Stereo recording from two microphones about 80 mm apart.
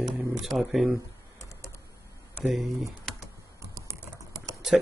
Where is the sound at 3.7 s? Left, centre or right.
Right.